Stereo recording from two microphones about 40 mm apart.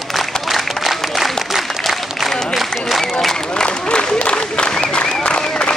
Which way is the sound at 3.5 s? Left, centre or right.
Left.